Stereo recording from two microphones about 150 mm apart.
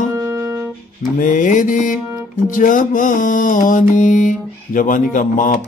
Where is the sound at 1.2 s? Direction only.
60° left (ahead or behind).